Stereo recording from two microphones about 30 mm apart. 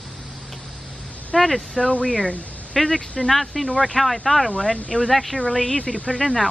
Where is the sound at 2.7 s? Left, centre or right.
Centre.